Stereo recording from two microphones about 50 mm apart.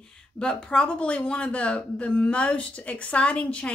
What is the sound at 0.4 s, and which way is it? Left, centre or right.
Speech, centre.